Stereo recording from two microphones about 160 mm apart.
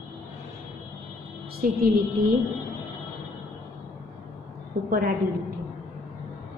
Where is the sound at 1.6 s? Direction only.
65° right (ahead or behind).